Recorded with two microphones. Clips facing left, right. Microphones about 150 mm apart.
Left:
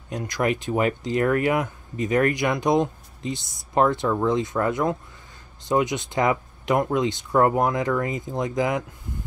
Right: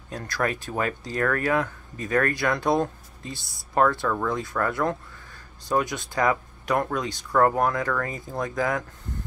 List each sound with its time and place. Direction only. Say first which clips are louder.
0.1 s speech: left 3 dB; 20° left (ahead or behind)